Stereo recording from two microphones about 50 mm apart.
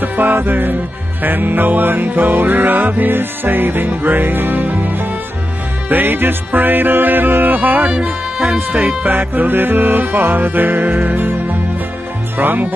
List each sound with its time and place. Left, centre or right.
0.0 s music: right
7.9 s music: right
8.5 s speech: right
9.0 s music: right